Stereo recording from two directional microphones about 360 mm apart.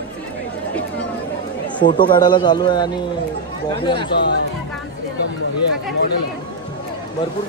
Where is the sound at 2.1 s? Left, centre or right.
Centre.